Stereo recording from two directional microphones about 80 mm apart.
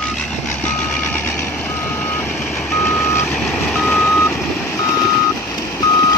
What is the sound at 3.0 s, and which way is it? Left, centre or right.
Reversing beeps, left.